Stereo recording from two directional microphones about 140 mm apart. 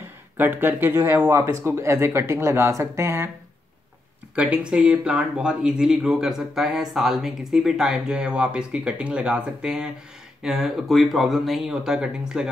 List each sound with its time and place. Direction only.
0.4 s speech: 15° right (ahead or behind)
4.4 s speech: 5° right (ahead or behind)